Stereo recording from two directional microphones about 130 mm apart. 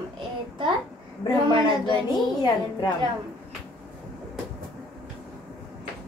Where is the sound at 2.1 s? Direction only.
30° left (ahead or behind).